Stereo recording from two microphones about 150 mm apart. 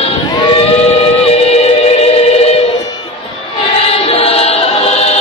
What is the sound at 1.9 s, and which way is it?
Music, 40° left (ahead or behind).